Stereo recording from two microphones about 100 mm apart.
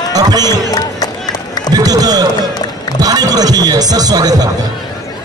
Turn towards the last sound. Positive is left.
turn(degrees=-40)  # may be behind; listen again after turning